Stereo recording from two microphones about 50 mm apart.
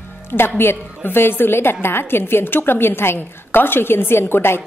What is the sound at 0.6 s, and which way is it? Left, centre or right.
A woman's voice, left.